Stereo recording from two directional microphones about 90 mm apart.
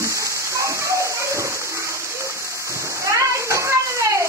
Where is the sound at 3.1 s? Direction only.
35° right (ahead or behind).